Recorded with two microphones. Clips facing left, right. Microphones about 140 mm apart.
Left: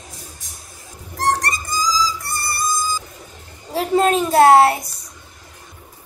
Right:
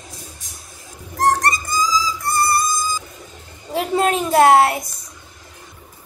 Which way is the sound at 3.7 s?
40° left (ahead or behind).